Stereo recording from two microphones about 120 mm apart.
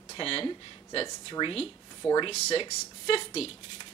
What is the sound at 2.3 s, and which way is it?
Speech, 55° left (ahead or behind).